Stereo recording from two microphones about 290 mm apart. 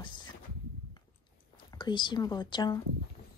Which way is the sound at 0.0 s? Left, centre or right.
Centre.